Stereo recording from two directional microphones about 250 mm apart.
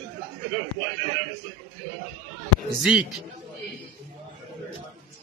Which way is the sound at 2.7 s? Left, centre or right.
Centre.